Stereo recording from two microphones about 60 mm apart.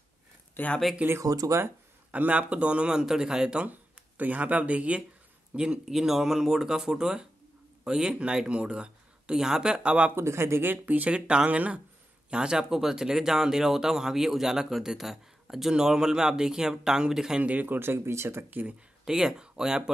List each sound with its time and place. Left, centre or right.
0.6 s speech: left
1.2 s speech: right
2.0 s speech: right
4.2 s speech: right
5.6 s speech: centre
10.1 s speech: right; by 17.4 s centre
17.4 s speech: right
17.7 s speech: right
18.5 s speech: right
19.0 s speech: centre